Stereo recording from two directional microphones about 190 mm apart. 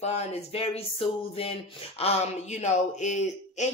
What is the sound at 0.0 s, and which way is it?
A woman's voice, 35° left (ahead or behind).